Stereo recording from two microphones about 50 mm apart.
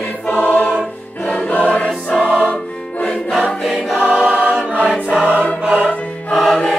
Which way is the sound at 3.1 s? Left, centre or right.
Centre.